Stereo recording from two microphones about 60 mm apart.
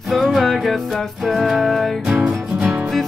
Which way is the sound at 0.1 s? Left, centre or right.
Centre.